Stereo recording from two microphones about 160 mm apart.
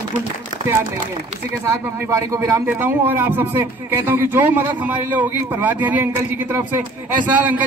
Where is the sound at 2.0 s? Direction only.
20° right (ahead or behind).